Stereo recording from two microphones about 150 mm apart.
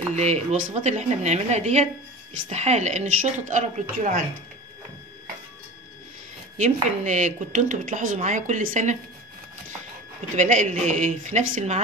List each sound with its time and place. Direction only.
0.1 s a woman's voice: 45° right (ahead or behind)
6.6 s a woman's voice: 50° right (ahead or behind)
10.3 s a woman's voice: 55° right (ahead or behind)